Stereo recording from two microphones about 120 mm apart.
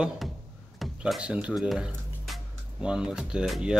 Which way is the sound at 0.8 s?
5° right (ahead or behind).